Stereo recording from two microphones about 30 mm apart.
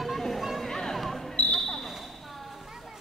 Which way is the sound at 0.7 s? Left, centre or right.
Centre.